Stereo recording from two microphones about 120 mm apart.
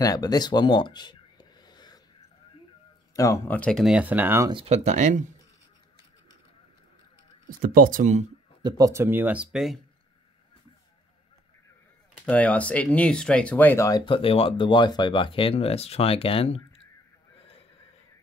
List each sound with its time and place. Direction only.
0.0 s a sound: 30° left (ahead or behind)
3.2 s speech: 25° left (ahead or behind)
3.4 s speech: 10° left (ahead or behind)
3.7 s speech: centre (ahead or behind)
4.0 s speech: 15° right (ahead or behind)
4.6 s speech: 70° right (ahead or behind)
8.0 s speech: 80° right
8.6 s speech: 30° right (ahead or behind); by 9.8 s 5° right (ahead or behind)
12.3 s speech: 15° left (ahead or behind)
14.0 s speech: 50° left (ahead or behind)